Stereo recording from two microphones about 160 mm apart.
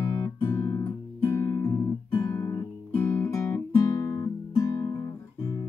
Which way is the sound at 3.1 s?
20° left (ahead or behind).